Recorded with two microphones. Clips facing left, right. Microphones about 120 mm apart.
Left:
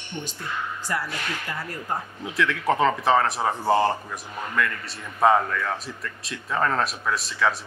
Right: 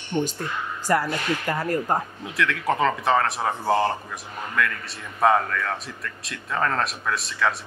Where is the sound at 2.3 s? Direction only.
Centre (ahead or behind).